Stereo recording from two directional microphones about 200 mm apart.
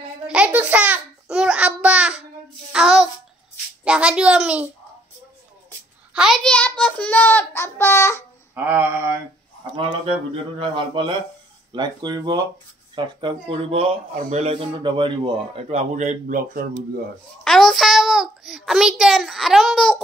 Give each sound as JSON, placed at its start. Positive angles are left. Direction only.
{"t": 0.3, "sound": "babbling", "side_deg": -5}
{"t": 2.7, "sound": "child singing", "side_deg": -5}
{"t": 3.8, "sound": "a child's voice", "side_deg": -5}
{"t": 6.1, "sound": "a child's voice", "side_deg": 0}
{"t": 8.5, "sound": "mantra", "side_deg": -10}
{"t": 9.8, "sound": "speech", "side_deg": -25}
{"t": 17.4, "sound": "a child's voice", "side_deg": 0}